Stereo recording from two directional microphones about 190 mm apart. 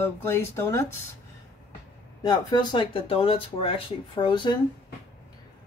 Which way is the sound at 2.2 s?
20° left (ahead or behind).